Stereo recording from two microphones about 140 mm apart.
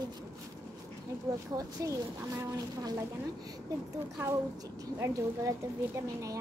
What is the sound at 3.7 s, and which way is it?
Speech, 25° right (ahead or behind).